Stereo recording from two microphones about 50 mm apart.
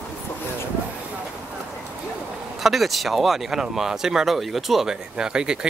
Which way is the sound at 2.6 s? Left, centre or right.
Centre.